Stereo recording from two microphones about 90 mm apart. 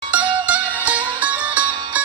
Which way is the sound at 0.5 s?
15° right (ahead or behind).